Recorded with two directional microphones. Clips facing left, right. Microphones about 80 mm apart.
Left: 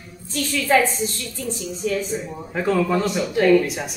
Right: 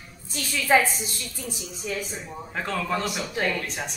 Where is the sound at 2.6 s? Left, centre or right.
Centre.